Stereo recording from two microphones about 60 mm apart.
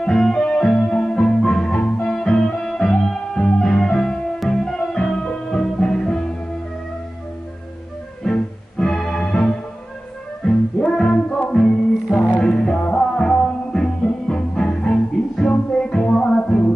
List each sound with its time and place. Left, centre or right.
0.0 s music: centre
8.2 s music: centre